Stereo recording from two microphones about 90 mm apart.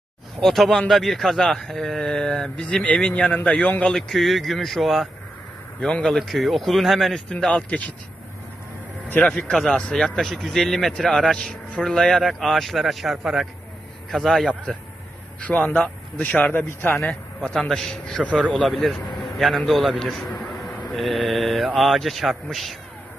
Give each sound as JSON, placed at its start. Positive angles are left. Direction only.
{"t": 0.4, "sound": "speech", "side_deg": 5}
{"t": 9.3, "sound": "speech", "side_deg": 5}
{"t": 15.4, "sound": "speech", "side_deg": 15}
{"t": 17.1, "sound": "speech", "side_deg": 10}
{"t": 18.5, "sound": "speech", "side_deg": 0}
{"t": 20.4, "sound": "vehicle", "side_deg": 5}
{"t": 20.9, "sound": "speech", "side_deg": 0}